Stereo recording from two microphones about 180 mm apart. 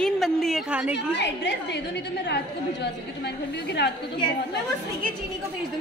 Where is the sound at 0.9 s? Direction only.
75° left (ahead or behind).